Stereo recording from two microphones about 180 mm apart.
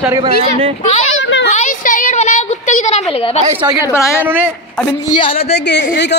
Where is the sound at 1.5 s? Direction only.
45° left (ahead or behind).